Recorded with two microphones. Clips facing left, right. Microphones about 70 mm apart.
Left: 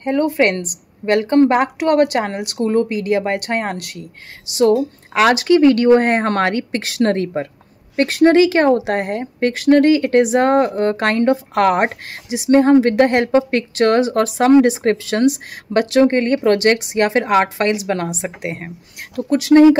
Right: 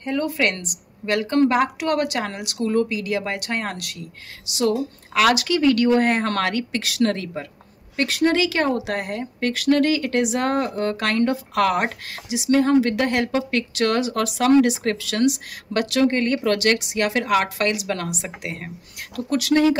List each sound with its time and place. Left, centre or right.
0.0 s speech: left